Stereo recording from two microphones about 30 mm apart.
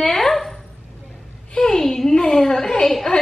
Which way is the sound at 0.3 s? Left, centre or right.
Centre.